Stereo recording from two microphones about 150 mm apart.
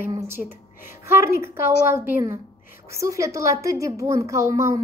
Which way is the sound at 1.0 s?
20° right (ahead or behind).